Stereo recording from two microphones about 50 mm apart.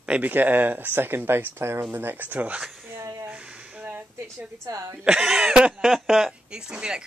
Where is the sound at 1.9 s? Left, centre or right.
Right.